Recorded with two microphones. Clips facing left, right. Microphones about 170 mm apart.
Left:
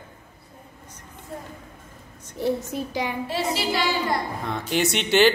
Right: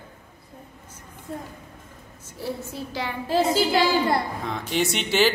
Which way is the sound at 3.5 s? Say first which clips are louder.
Right 4 dB; 30° right (ahead or behind).